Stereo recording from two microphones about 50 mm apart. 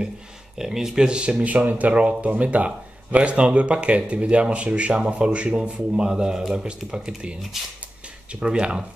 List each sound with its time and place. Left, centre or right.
0.6 s speech: centre; by 5.8 s right
5.9 s speech: centre
8.3 s speech: centre